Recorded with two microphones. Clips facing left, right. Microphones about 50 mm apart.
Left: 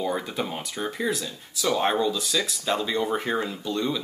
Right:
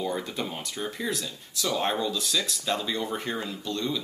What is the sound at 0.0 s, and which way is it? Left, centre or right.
Speech, centre.